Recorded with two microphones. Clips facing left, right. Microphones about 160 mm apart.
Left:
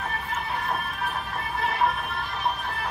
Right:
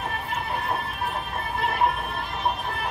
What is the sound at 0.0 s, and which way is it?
Music, 25° right (ahead or behind).